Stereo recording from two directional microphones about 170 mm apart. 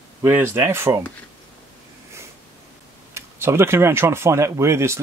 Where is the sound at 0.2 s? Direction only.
15° right (ahead or behind).